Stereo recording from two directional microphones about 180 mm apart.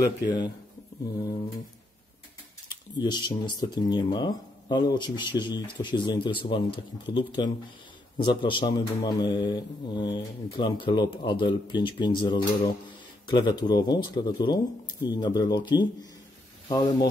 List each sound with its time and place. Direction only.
3.0 s speech: 25° left (ahead or behind)